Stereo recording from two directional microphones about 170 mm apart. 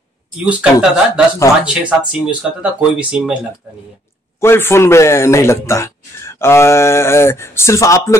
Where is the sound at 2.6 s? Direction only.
5° right (ahead or behind).